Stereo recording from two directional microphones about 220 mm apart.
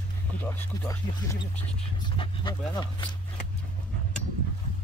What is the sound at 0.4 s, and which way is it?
Speech, 10° left (ahead or behind).